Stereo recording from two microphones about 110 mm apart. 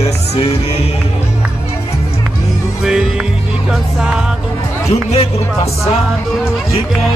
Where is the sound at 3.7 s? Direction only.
5° right (ahead or behind).